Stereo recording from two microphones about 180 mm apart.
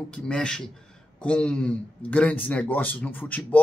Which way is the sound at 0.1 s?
5° left (ahead or behind).